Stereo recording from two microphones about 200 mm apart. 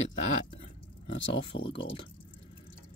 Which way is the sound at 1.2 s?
70° left (ahead or behind).